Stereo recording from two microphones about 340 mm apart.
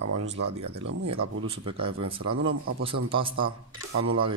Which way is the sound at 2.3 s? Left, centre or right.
Right.